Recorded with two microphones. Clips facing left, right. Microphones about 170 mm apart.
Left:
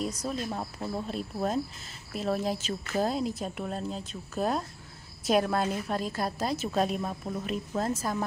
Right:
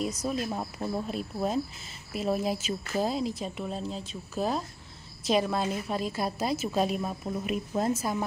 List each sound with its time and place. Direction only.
0.2 s a woman's voice: 5° right (ahead or behind)